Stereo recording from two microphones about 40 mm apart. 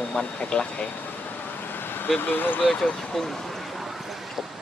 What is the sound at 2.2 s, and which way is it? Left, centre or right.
Speech, left.